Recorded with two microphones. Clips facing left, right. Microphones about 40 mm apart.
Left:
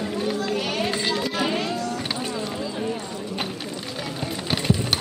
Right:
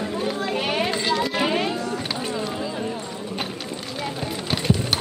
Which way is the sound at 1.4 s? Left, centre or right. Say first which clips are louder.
Right 2 dB; right.